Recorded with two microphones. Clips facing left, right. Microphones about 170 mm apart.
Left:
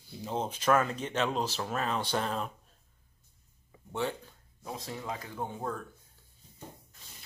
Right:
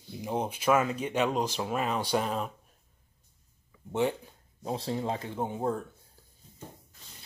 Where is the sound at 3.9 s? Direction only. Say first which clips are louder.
Right 5 dB; 20° right (ahead or behind).